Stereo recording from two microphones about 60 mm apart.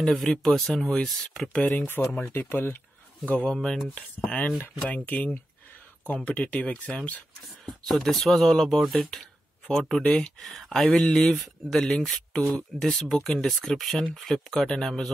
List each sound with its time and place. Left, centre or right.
0.0 s speech: centre
1.5 s speech: left
2.3 s speech: left
3.3 s speech: left
3.5 s speech: centre
3.9 s speech: centre
7.8 s speech: centre
10.8 s speech: centre